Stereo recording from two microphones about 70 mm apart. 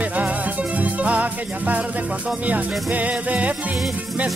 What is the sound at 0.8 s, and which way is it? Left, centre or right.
Music, centre.